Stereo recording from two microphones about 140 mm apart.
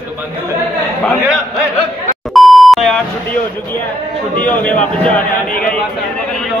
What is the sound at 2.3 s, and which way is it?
Beep, centre (ahead or behind).